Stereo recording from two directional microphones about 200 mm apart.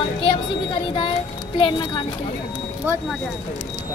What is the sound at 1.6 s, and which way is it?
Speech, 25° left (ahead or behind).